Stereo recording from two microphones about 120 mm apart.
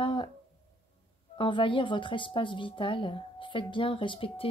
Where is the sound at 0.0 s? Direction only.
45° left (ahead or behind).